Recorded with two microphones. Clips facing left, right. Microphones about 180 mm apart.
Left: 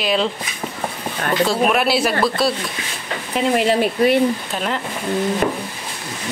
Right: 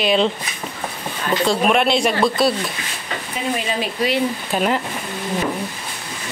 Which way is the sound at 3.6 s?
65° left (ahead or behind).